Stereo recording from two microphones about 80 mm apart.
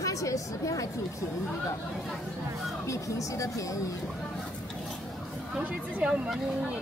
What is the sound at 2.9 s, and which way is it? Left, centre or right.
Speech, left.